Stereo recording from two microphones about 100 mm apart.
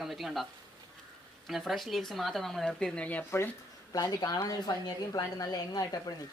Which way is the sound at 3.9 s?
40° left (ahead or behind).